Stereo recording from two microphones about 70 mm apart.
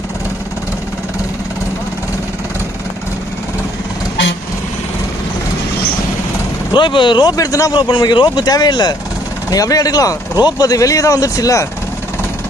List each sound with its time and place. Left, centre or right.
6.7 s speech: left
7.3 s speech: left
7.7 s speech: left
9.5 s speech: left